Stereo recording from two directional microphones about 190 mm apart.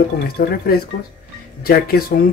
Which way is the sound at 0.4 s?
55° left (ahead or behind).